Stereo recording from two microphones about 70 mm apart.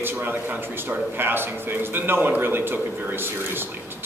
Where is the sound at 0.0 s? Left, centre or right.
Right.